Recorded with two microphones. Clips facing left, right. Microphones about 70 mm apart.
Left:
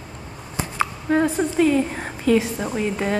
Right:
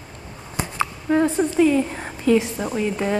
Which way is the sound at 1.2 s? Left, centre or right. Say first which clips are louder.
Right 1 dB; left.